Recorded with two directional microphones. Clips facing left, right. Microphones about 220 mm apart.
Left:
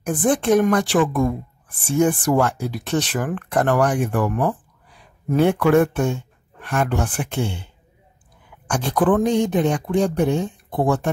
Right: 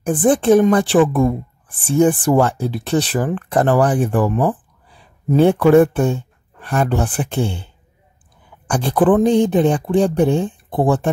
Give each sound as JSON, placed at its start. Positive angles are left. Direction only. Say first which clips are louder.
{"t": 0.0, "sound": "a woman's voice", "louder": "right 5 dB", "side_deg": -30}
{"t": 4.9, "sound": "a sound", "louder": "right 4 dB", "side_deg": -30}
{"t": 5.8, "sound": "speech", "louder": "right 5 dB", "side_deg": -35}
{"t": 8.6, "sound": "a woman's voice", "louder": "right 4 dB", "side_deg": -35}